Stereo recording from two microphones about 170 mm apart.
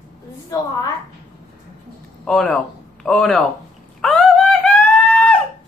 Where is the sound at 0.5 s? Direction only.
20° left (ahead or behind).